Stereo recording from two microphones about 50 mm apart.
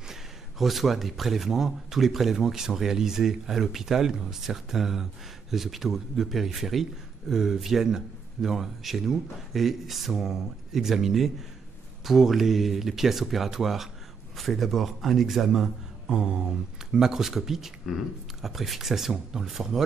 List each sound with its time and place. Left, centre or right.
0.1 s a man's voice: centre
16.2 s a sound: centre
16.9 s a man's voice: centre